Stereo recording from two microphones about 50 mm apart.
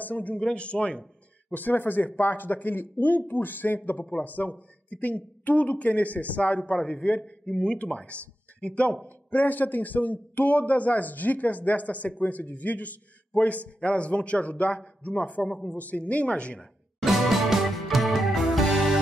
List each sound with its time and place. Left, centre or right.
0.0 s a man's voice: left
1.5 s a man's voice: left
17.0 s music: centre